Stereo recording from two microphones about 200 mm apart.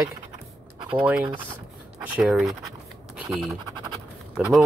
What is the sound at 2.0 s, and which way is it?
Speech, 5° right (ahead or behind).